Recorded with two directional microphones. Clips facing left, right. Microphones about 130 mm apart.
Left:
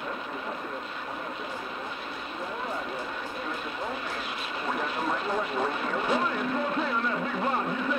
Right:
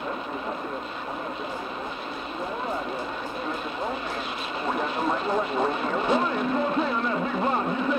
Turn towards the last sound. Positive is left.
turn(degrees=-25)  # may be behind; listen again after turning